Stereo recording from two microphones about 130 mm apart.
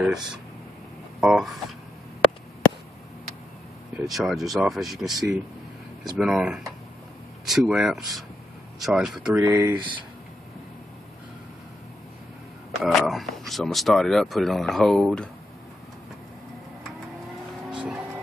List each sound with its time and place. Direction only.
0.0 s speech: 5° right (ahead or behind)
3.9 s speech: centre (ahead or behind)
9.4 s speech: 20° right (ahead or behind)
12.8 s speech: centre (ahead or behind)
17.6 s vehicle: 5° right (ahead or behind)